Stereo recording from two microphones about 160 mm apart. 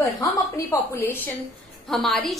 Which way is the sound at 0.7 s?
20° left (ahead or behind).